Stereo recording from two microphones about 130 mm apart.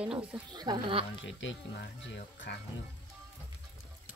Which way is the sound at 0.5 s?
35° right (ahead or behind).